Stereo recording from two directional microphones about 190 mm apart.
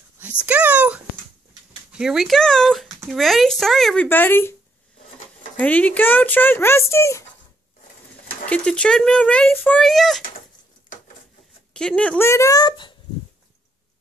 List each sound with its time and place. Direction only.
0.5 s speech: 5° right (ahead or behind); by 4.6 s 10° left (ahead or behind)
5.6 s speech: 10° left (ahead or behind)
8.5 s speech: 5° left (ahead or behind)
11.7 s speech: 5° left (ahead or behind); by 12.9 s 25° left (ahead or behind)